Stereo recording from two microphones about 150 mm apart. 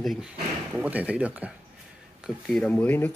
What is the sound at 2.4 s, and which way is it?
Speech, 5° left (ahead or behind).